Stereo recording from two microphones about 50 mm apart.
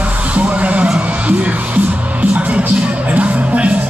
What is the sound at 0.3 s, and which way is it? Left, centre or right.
Music, right.